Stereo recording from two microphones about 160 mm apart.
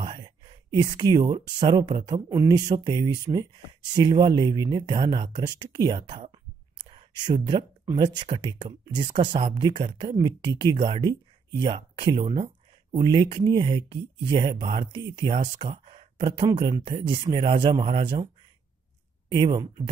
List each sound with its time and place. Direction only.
0.0 s speech: 30° right (ahead or behind)
15.7 s speech: 45° right (ahead or behind)
19.2 s speech: 30° right (ahead or behind)